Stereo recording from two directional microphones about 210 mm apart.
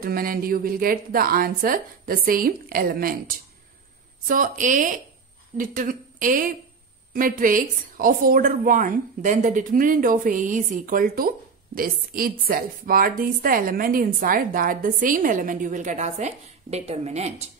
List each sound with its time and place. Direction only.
0.0 s a woman's voice: 45° right (ahead or behind)